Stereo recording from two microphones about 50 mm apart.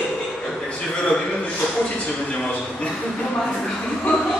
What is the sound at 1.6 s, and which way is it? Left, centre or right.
A man's voice, left.